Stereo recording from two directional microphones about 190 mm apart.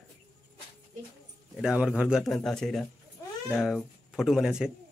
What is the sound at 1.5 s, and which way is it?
A man's voice, 5° right (ahead or behind).